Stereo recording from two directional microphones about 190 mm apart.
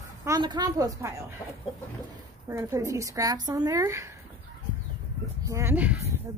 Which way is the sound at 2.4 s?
15° right (ahead or behind).